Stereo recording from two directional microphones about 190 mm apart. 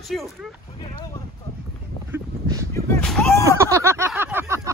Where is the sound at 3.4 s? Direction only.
15° right (ahead or behind).